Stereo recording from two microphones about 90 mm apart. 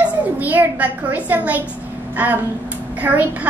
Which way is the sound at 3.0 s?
20° right (ahead or behind).